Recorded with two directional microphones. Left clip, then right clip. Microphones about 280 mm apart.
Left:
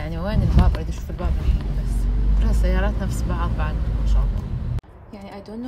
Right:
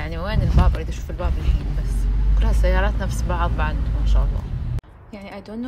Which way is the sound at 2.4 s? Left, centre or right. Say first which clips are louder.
Right 4 dB; centre.